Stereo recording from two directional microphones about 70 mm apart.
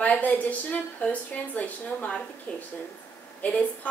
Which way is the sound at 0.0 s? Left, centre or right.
Left.